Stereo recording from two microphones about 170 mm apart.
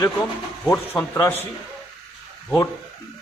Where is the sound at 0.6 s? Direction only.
15° left (ahead or behind).